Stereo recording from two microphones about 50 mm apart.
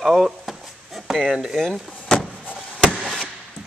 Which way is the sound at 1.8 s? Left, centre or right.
Centre.